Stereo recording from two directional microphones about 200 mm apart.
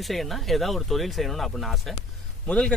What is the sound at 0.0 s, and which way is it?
Speech, centre (ahead or behind).